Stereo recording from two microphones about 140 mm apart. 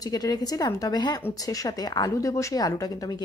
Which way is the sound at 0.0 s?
25° left (ahead or behind).